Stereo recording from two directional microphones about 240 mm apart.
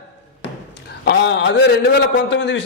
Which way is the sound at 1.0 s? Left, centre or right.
Left.